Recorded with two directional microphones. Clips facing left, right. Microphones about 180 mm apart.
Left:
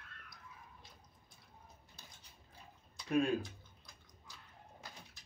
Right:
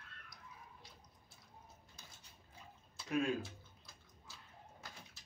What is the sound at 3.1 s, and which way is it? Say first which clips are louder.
Speech: left 4 dB; 35° left (ahead or behind).